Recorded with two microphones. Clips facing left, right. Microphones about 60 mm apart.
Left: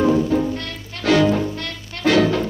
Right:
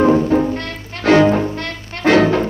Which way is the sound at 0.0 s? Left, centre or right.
Right.